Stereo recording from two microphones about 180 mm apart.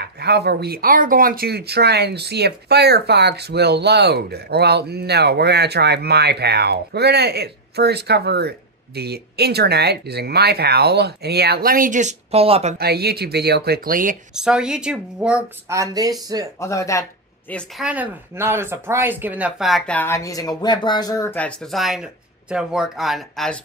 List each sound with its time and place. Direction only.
0.0 s speech: 65° right (ahead or behind); by 12.7 s 35° right (ahead or behind)
12.7 s speech: 60° right (ahead or behind)
14.3 s speech: 5° right (ahead or behind)
15.8 s speech: 20° right (ahead or behind)
16.5 s speech: 15° left (ahead or behind)
17.5 s speech: 5° left (ahead or behind)
17.8 s speech: 10° right (ahead or behind)